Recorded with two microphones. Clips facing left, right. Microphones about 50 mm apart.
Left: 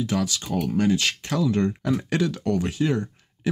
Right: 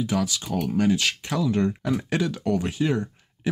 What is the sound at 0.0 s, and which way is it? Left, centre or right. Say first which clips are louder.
Speech: even; centre.